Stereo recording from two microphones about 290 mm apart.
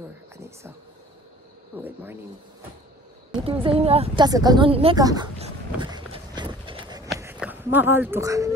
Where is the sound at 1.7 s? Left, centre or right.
Centre.